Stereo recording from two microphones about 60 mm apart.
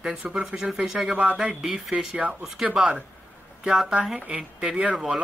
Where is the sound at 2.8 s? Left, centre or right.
Centre.